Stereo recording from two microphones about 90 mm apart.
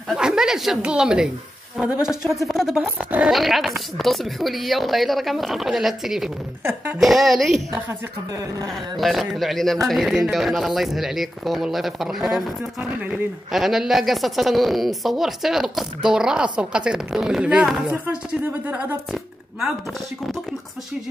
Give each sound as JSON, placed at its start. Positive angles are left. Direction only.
{"t": 0.1, "sound": "speech", "side_deg": -10}
{"t": 3.3, "sound": "speech", "side_deg": 0}
{"t": 8.9, "sound": "speech", "side_deg": 0}
{"t": 13.5, "sound": "speech", "side_deg": -5}
{"t": 17.9, "sound": "speech", "side_deg": -25}